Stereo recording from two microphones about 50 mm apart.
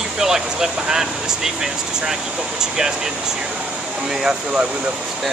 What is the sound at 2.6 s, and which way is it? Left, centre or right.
Speech, centre.